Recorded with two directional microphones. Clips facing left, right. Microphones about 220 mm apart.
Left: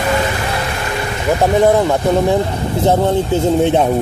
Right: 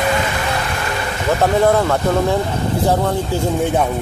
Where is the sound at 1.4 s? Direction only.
20° left (ahead or behind).